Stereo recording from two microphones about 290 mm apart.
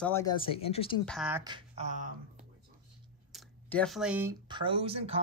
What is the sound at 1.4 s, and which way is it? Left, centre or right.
Speech, centre.